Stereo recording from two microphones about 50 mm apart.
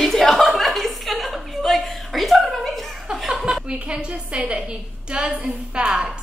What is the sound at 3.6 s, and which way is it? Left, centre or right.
A woman's voice, right.